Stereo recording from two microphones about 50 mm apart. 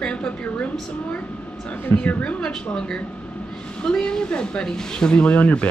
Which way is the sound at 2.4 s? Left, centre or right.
Centre.